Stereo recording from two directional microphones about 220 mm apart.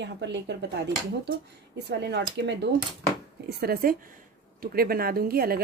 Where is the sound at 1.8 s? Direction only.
50° right (ahead or behind).